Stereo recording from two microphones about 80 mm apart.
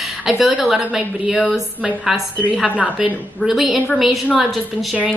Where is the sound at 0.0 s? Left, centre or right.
Centre.